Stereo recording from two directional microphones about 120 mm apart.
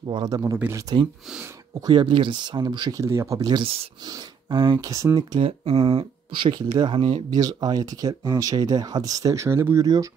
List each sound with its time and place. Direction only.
0.0 s speech: 40° right (ahead or behind)
0.3 s speech: 30° right (ahead or behind)
1.9 s speech: 40° right (ahead or behind); by 3.3 s 25° right (ahead or behind)
3.4 s speech: 40° right (ahead or behind)
5.7 s speech: 55° right (ahead or behind)
7.2 s speech: 35° right (ahead or behind)